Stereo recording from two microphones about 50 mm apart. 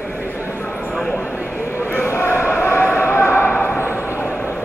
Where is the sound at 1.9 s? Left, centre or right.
Left.